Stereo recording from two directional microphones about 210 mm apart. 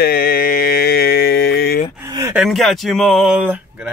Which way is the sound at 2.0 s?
15° right (ahead or behind).